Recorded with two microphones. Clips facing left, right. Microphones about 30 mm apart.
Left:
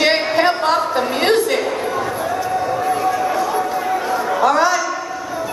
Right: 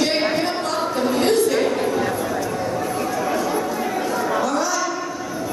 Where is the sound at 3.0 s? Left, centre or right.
Centre.